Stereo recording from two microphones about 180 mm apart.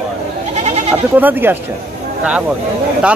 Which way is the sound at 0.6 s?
35° right (ahead or behind).